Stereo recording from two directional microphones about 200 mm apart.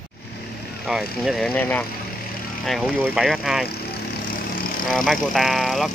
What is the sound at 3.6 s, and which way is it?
Vehicle, 50° left (ahead or behind).